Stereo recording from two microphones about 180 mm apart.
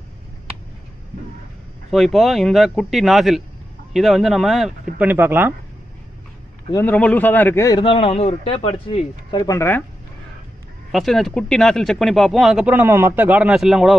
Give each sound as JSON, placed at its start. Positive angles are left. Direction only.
{"t": 1.9, "sound": "speech", "side_deg": 0}
{"t": 6.7, "sound": "a man's voice", "side_deg": 10}
{"t": 7.9, "sound": "speech", "side_deg": 35}
{"t": 10.9, "sound": "speech", "side_deg": 0}